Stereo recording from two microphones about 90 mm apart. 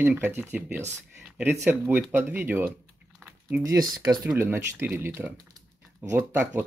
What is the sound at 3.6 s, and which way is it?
Speech, 45° right (ahead or behind).